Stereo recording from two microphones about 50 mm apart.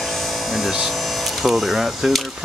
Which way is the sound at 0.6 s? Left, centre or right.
Centre.